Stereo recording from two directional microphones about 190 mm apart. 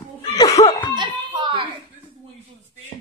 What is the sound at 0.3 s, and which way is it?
Laughter, 20° left (ahead or behind).